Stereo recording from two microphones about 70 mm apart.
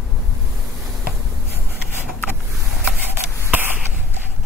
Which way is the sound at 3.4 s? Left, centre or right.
Right.